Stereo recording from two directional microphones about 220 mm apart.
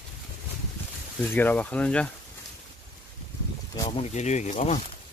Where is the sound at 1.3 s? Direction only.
10° left (ahead or behind).